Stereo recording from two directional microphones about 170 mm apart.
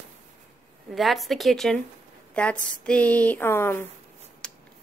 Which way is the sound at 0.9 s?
Centre (ahead or behind).